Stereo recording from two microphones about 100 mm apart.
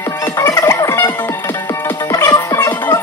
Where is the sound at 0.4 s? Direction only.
30° left (ahead or behind).